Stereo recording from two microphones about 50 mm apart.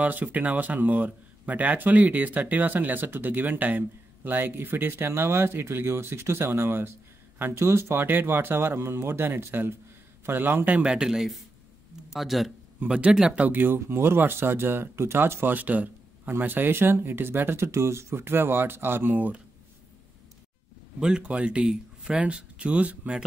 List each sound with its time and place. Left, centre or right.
0.0 s speech: right
8.0 s speech: right
10.9 s speech: centre
12.8 s speech: right
13.5 s speech: right
13.7 s speech: right
21.0 s speech: centre